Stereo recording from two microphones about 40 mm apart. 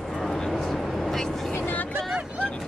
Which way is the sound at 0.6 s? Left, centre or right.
Centre.